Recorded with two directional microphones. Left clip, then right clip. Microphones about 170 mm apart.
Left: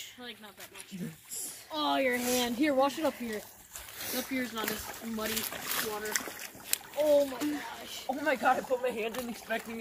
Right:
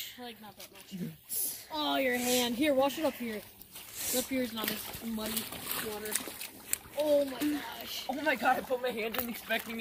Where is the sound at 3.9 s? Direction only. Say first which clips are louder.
Right 2 dB; centre (ahead or behind).